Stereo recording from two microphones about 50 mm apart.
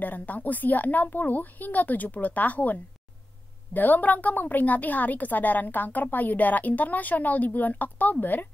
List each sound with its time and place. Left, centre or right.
0.0 s a woman's voice: left